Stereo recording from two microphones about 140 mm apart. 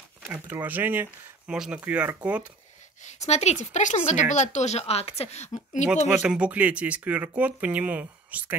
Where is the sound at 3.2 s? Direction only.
55° left (ahead or behind).